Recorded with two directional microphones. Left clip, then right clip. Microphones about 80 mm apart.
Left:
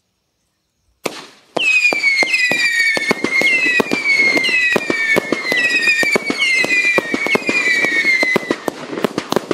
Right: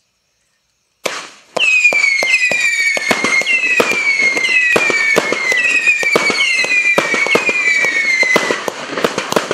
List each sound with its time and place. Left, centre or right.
1.0 s fireworks: right